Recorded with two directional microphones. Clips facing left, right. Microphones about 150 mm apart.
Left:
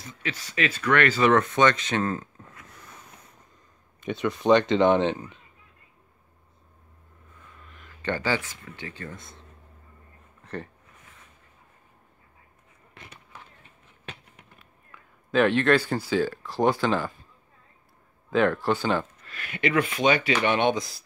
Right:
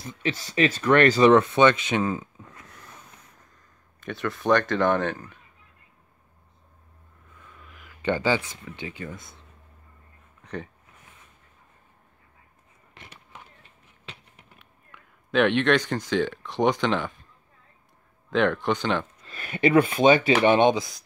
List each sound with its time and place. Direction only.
0.7 s speech: 30° right (ahead or behind)
1.3 s speech: 15° right (ahead or behind)
4.0 s speech: 20° left (ahead or behind)
7.5 s speech: 5° right (ahead or behind)
9.1 s speech: centre (ahead or behind)
10.4 s a sound: 5° left (ahead or behind)
13.3 s a sound: 20° right (ahead or behind)
14.6 s speech: centre (ahead or behind)
18.3 s speech: 5° left (ahead or behind)
19.2 s speech: 35° right (ahead or behind)
20.7 s speech: centre (ahead or behind)